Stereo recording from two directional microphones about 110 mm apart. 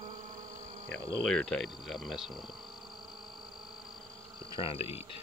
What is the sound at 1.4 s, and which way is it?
Speech, centre (ahead or behind).